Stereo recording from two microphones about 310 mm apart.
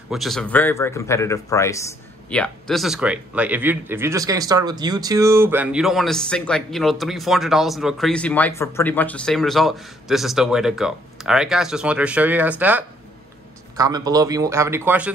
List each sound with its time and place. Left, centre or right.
0.1 s speech: centre